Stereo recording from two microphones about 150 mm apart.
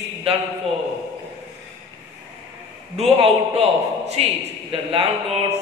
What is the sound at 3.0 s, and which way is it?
A man's voice, 40° right (ahead or behind).